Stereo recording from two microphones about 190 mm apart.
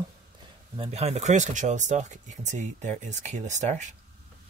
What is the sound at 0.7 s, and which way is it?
Speech, 35° right (ahead or behind).